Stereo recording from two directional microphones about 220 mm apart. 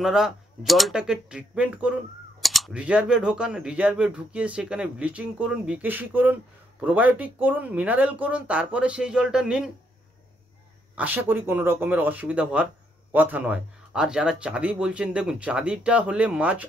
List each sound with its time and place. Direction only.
0.0 s speech: centre (ahead or behind)
11.0 s speech: 10° right (ahead or behind)